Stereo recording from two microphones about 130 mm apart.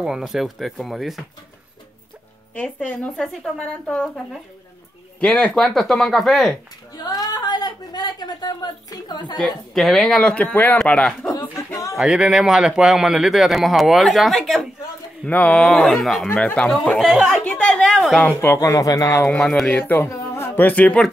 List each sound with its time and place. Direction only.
0.0 s speech: 5° right (ahead or behind)
2.5 s speech: 10° left (ahead or behind)
7.1 s a sound: 30° left (ahead or behind)
9.8 s speech: centre (ahead or behind)
11.5 s a sound: 25° left (ahead or behind)
12.0 s speech: 5° right (ahead or behind)
16.3 s speech: 15° left (ahead or behind)
17.0 s chatter: centre (ahead or behind)
18.4 s speech: 20° left (ahead or behind)
19.2 s speech: 5° left (ahead or behind)
19.8 s speech: 20° left (ahead or behind)